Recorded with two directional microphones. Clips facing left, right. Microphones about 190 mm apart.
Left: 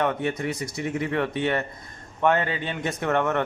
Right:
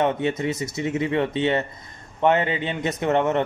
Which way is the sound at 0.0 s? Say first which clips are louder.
Right 3 dB; 20° right (ahead or behind).